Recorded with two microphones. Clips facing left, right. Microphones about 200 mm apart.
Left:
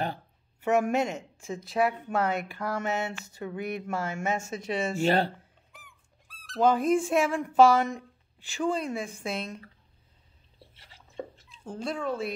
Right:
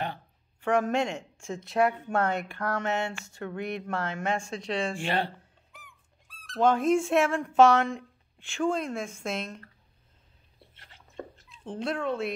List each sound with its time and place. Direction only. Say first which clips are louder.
0.6 s speech: left 1 dB; 5° left (ahead or behind)
4.9 s speech: left 5 dB; 40° left (ahead or behind)
5.7 s speech: right 4 dB; centre (ahead or behind)
10.7 s a sound: even; centre (ahead or behind)
11.4 s speech: right 3 dB; centre (ahead or behind)